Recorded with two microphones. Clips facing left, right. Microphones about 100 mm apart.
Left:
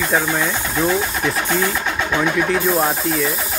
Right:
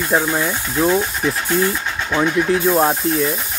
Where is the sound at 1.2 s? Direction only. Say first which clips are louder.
Right 1 dB; 70° left (ahead or behind).